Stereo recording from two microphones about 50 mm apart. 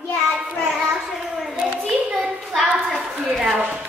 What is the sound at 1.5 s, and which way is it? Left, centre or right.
Hands, right.